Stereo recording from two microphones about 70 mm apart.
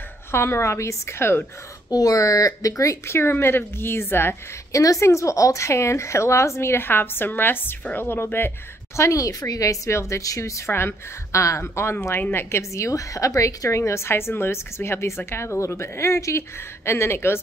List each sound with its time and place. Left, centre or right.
0.3 s a woman's voice: left
1.9 s a woman's voice: left
4.7 s a woman's voice: left
8.9 s a woman's voice: left
10.7 s a woman's voice: left